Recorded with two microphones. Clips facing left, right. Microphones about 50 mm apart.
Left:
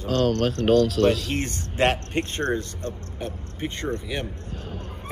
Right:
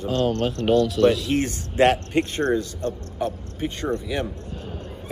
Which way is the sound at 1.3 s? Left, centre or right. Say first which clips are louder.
Right 5 dB; centre.